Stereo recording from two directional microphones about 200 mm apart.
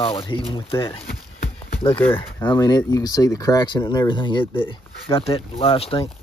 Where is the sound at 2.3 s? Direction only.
10° left (ahead or behind).